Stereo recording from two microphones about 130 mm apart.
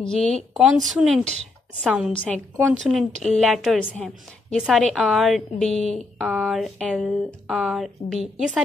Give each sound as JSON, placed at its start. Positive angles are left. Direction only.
{"t": 0.0, "sound": "a woman's voice", "side_deg": 5}
{"t": 2.1, "sound": "a woman's voice", "side_deg": 10}
{"t": 4.6, "sound": "speech", "side_deg": -5}
{"t": 5.7, "sound": "speech", "side_deg": 55}
{"t": 5.9, "sound": "speech", "side_deg": -5}